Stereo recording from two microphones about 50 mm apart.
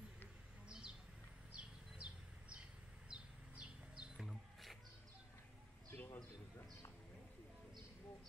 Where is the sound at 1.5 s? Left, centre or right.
Right.